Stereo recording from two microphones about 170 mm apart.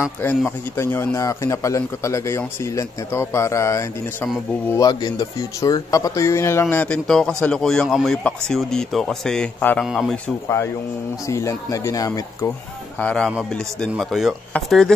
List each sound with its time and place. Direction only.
0.7 s speech: 15° left (ahead or behind)
11.2 s speech: 20° left (ahead or behind)
13.0 s speech: 5° left (ahead or behind)